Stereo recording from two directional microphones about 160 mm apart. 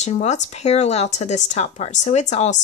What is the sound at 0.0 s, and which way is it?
Speech, 45° left (ahead or behind).